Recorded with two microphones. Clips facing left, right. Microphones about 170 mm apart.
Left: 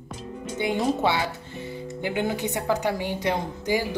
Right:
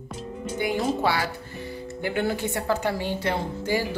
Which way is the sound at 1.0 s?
20° left (ahead or behind).